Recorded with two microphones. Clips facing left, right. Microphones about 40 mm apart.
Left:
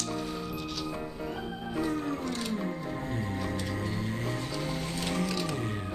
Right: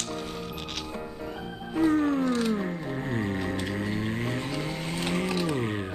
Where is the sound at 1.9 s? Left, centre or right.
Right.